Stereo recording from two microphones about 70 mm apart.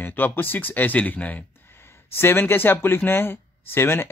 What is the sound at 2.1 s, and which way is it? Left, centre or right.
Speech, left.